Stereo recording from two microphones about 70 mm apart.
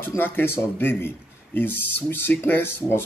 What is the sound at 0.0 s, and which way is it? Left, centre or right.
Speech, left.